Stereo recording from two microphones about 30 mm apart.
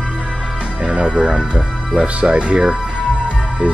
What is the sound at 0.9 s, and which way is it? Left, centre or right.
Speech, right.